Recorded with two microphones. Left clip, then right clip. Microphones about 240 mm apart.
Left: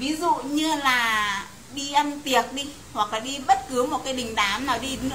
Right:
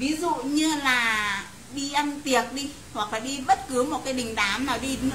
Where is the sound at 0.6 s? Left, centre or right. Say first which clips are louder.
Right 2 dB; centre.